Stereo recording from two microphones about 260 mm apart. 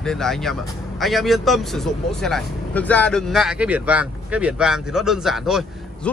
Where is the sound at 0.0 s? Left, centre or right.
Centre.